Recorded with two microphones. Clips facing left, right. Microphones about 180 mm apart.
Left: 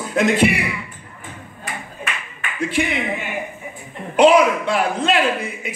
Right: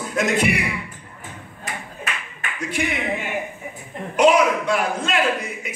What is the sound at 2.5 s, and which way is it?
Speech, 30° left (ahead or behind).